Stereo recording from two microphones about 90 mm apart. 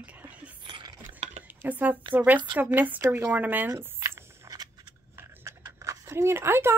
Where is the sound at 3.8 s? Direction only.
25° right (ahead or behind).